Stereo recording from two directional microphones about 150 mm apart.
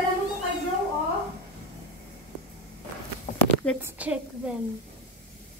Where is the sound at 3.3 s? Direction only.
50° left (ahead or behind).